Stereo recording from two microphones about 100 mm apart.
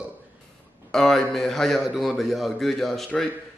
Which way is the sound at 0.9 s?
5° left (ahead or behind).